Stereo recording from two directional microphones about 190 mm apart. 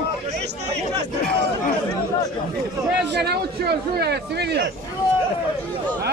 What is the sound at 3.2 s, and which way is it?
A man's voice, 60° right (ahead or behind).